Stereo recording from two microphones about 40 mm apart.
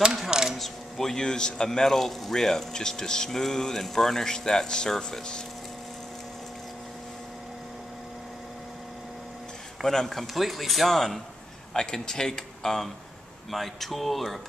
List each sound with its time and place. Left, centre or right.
0.0 s a sound: centre
0.6 s a man's voice: centre
9.8 s a man's voice: centre
11.7 s a man's voice: centre